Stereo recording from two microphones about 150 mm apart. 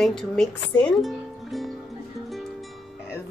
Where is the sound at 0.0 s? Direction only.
5° left (ahead or behind).